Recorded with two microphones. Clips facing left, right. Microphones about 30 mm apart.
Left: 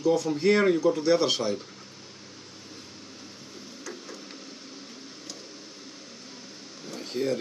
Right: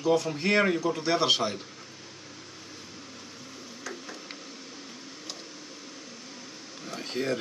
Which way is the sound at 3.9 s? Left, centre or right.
Right.